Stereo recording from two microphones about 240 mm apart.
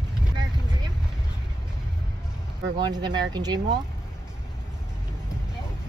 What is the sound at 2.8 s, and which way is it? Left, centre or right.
Speech, centre.